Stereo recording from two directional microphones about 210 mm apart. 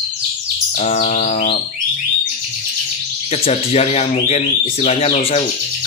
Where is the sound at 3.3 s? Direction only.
30° left (ahead or behind).